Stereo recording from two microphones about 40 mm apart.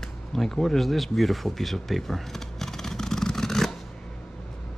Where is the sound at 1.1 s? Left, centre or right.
Centre.